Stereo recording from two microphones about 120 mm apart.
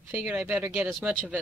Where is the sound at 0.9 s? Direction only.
Centre (ahead or behind).